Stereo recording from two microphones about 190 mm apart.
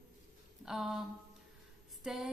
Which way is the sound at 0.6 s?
Centre (ahead or behind).